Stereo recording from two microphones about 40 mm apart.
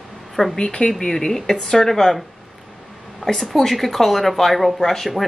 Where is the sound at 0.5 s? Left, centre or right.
Centre.